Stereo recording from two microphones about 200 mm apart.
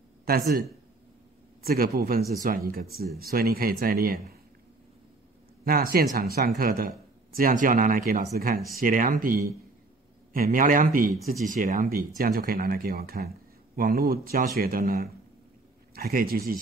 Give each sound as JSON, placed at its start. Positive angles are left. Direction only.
{"t": 0.2, "sound": "a man's voice", "side_deg": -50}
{"t": 5.7, "sound": "speech", "side_deg": -45}